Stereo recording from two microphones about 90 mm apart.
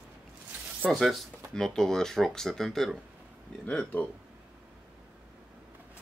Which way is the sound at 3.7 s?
15° left (ahead or behind).